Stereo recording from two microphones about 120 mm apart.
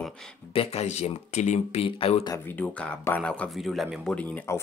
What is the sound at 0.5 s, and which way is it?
Speech, 55° left (ahead or behind).